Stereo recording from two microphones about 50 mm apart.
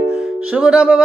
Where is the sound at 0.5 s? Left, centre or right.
Right.